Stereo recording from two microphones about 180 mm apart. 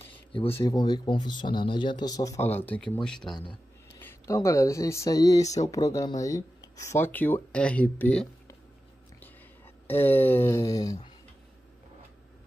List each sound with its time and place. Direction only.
0.1 s a sound: 30° left (ahead or behind)
0.7 s speech: 25° left (ahead or behind); by 3.3 s 5° left (ahead or behind)
4.0 s speech: 15° left (ahead or behind)
9.8 s speech: 10° left (ahead or behind)